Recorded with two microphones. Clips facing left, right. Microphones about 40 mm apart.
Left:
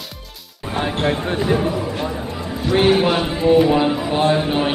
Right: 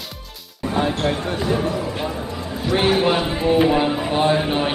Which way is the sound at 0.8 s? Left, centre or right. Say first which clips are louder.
Left 1 dB; left.